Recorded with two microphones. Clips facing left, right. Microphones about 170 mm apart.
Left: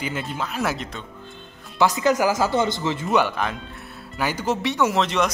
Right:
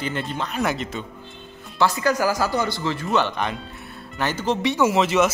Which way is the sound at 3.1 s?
5° left (ahead or behind).